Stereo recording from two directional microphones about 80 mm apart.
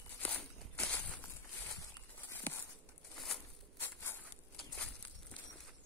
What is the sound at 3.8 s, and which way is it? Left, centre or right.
Walk, left.